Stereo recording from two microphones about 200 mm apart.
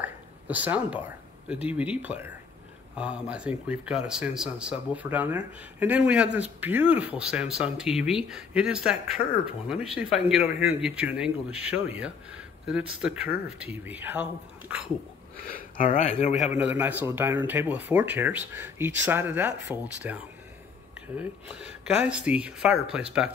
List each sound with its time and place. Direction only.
0.0 s speech: 10° right (ahead or behind)
15.5 s speech: 40° left (ahead or behind)
16.3 s speech: 5° right (ahead or behind)